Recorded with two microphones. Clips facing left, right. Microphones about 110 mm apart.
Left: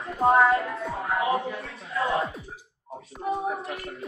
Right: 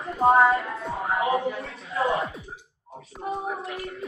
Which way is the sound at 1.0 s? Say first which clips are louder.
Right 2 dB; 30° right (ahead or behind).